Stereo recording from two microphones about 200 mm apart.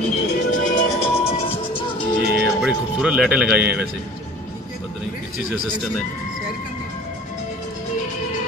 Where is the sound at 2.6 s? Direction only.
5° right (ahead or behind).